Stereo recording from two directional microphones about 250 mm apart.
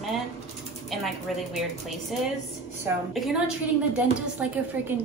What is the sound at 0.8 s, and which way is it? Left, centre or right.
Speech, centre.